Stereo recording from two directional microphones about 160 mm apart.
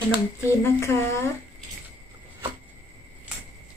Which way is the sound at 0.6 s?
15° left (ahead or behind).